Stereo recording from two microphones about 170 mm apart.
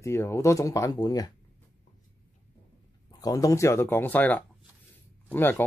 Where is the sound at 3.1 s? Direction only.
20° left (ahead or behind).